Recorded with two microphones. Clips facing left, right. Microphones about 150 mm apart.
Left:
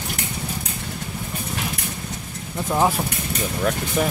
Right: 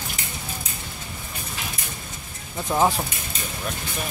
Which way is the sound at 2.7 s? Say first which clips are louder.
Left 1 dB; 5° right (ahead or behind).